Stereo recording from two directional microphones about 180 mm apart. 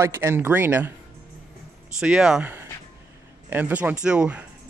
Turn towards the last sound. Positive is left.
turn(degrees=-5)  # may be behind; listen again after turning